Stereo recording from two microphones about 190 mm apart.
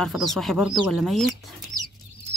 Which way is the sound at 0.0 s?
Centre (ahead or behind).